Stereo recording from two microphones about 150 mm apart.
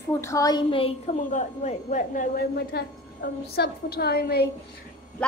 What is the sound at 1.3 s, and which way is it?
Speech, 50° left (ahead or behind).